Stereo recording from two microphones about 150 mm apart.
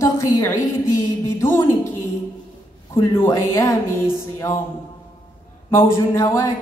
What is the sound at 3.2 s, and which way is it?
Speech, 20° left (ahead or behind).